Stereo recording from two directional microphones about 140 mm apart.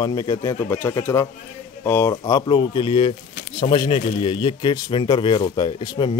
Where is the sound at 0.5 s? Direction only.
15° left (ahead or behind).